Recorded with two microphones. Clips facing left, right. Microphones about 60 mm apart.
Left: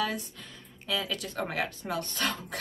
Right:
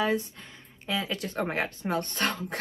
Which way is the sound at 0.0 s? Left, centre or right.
Right.